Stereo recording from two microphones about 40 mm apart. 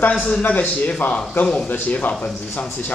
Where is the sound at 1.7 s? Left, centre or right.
Left.